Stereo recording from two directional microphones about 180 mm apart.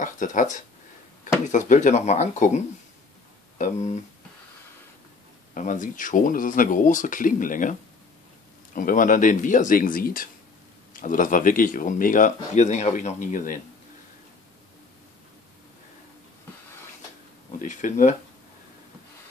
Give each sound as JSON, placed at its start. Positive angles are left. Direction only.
{"t": 0.0, "sound": "speech", "side_deg": 45}
{"t": 5.5, "sound": "speech", "side_deg": 45}
{"t": 8.7, "sound": "speech", "side_deg": 50}
{"t": 17.6, "sound": "speech", "side_deg": 45}